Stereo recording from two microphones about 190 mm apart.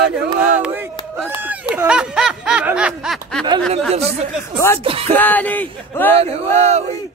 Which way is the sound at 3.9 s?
35° right (ahead or behind).